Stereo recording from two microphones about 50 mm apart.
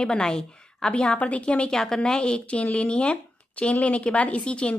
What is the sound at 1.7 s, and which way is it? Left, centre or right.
Speech, centre.